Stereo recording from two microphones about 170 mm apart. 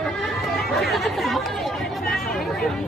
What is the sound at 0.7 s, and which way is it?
Chatter, centre (ahead or behind).